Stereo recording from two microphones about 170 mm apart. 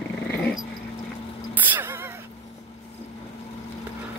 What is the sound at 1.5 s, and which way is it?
Gasp, 10° right (ahead or behind).